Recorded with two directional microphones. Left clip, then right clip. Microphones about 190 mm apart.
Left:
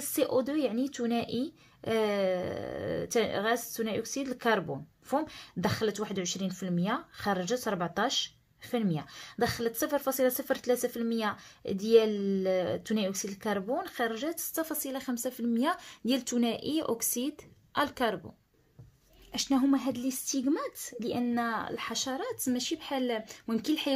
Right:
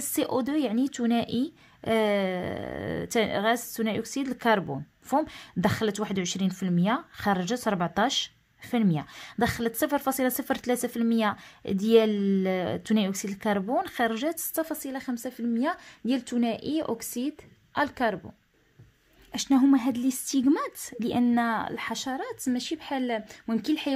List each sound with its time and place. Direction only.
0.1 s a woman's voice: 40° right (ahead or behind); by 18.3 s 25° right (ahead or behind)
19.3 s a woman's voice: 35° right (ahead or behind)